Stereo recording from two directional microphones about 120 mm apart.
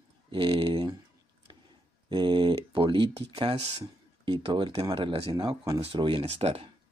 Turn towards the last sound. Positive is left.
turn(degrees=-60)  # may be behind; listen again after turning